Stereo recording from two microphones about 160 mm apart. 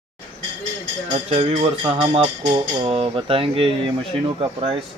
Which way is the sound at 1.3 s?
35° right (ahead or behind).